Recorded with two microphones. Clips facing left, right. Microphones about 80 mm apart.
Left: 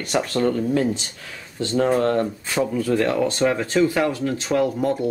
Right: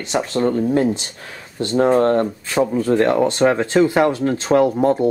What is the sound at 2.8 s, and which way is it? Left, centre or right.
Speech, right.